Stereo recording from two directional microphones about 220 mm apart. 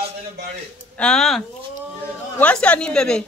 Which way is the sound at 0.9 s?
5° left (ahead or behind).